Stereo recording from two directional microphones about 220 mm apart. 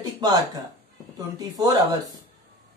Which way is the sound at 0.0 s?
20° right (ahead or behind).